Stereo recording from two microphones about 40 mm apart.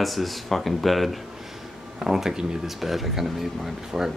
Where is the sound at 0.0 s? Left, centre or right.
Centre.